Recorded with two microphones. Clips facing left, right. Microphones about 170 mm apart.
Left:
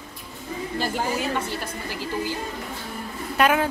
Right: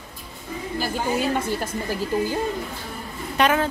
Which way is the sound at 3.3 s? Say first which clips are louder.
Even; 5° left (ahead or behind).